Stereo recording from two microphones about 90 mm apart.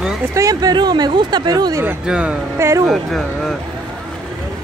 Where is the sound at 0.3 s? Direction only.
40° right (ahead or behind).